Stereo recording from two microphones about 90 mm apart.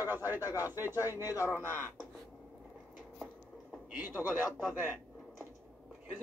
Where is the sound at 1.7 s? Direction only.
25° right (ahead or behind).